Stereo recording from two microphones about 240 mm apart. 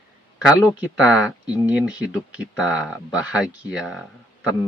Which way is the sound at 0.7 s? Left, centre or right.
Centre.